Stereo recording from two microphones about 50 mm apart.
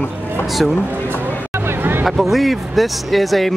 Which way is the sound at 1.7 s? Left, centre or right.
Right.